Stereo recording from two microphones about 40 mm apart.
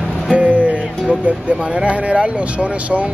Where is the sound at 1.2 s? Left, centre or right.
Right.